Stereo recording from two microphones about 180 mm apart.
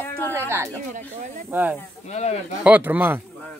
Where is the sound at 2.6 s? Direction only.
10° right (ahead or behind).